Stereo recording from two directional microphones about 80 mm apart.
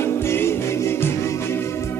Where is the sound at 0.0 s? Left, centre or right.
Left.